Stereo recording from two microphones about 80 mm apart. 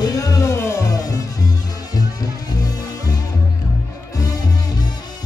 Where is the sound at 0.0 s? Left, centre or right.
Left.